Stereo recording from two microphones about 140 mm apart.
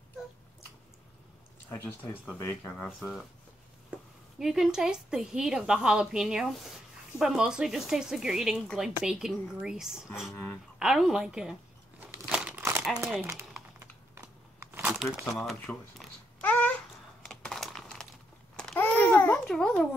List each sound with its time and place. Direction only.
1.7 s speech: 15° left (ahead or behind)
3.0 s a woman's voice: centre (ahead or behind)
4.4 s a woman's voice: 5° right (ahead or behind)
10.3 s speech: 15° left (ahead or behind)
10.8 s a woman's voice: 5° right (ahead or behind)
12.3 s crumpling: 10° right (ahead or behind)
15.3 s a woman's voice: centre (ahead or behind)
16.3 s babbling: 10° left (ahead or behind)